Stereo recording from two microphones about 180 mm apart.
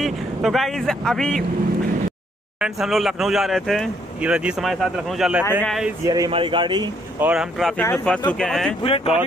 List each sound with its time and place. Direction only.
0.0 s speech: centre (ahead or behind)
2.6 s speech: centre (ahead or behind)
6.0 s speech: 20° right (ahead or behind)
7.2 s speech: 5° right (ahead or behind)
8.8 s speech: 30° left (ahead or behind)